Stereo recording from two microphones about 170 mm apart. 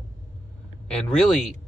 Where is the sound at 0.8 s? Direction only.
Centre (ahead or behind).